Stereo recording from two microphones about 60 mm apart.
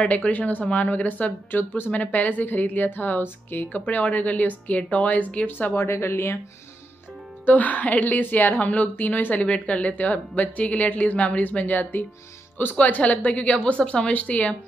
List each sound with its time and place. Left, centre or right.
0.0 s speech: centre
0.3 s a woman's voice: left
7.4 s a woman's voice: left